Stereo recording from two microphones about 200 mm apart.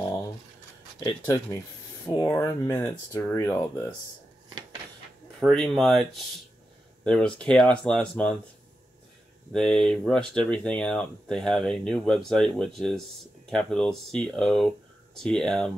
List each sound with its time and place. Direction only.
0.9 s speech: 20° left (ahead or behind)
5.4 s speech: 5° left (ahead or behind)
9.5 s speech: centre (ahead or behind)